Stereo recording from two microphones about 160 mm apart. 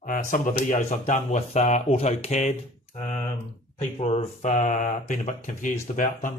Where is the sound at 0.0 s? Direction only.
55° left (ahead or behind).